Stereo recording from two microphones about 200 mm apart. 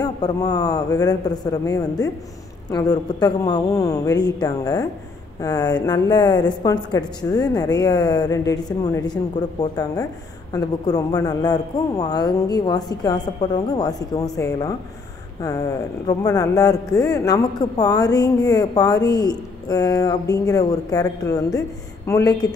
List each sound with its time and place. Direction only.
0.0 s a woman's voice: 20° left (ahead or behind)
10.5 s a woman's voice: 20° left (ahead or behind)
16.1 s a woman's voice: 20° left (ahead or behind)